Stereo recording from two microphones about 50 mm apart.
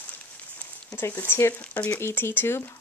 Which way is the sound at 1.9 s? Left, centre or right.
Left.